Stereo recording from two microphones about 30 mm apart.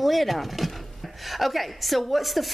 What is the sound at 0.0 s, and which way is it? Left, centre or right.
A woman's voice, centre.